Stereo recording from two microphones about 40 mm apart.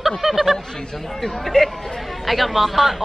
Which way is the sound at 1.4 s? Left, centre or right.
Centre.